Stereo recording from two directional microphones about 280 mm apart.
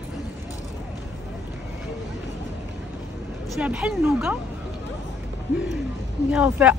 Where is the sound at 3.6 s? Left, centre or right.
Centre.